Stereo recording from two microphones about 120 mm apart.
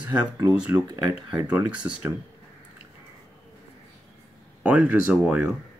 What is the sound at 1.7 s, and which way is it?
Speech, 10° right (ahead or behind).